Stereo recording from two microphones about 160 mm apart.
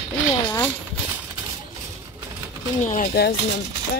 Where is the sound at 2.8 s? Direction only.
55° left (ahead or behind).